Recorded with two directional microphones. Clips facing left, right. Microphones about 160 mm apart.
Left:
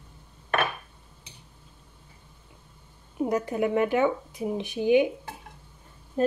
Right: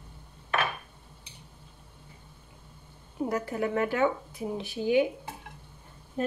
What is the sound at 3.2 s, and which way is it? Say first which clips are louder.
Speech: left 4 dB; 20° left (ahead or behind).